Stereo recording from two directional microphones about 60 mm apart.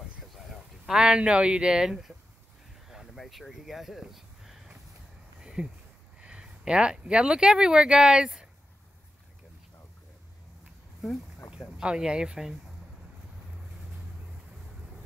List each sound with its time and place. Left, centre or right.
0.8 s speech: centre
3.2 s speech: centre
5.4 s a sound: centre
6.2 s speech: centre
11.8 s speech: centre